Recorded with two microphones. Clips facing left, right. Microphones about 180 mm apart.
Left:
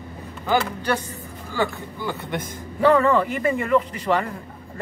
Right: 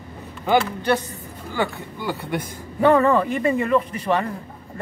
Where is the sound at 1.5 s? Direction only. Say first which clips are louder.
Even; 15° right (ahead or behind).